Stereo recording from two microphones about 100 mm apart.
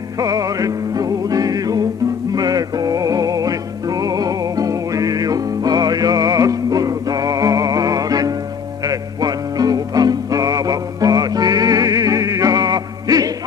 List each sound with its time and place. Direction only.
0.2 s music: 35° right (ahead or behind)